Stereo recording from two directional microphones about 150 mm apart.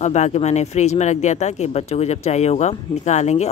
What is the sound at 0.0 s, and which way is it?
Speech, 50° left (ahead or behind).